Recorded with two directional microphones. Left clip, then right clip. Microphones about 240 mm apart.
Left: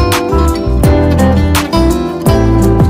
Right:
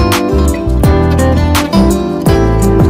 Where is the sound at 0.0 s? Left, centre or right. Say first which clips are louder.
Even; centre.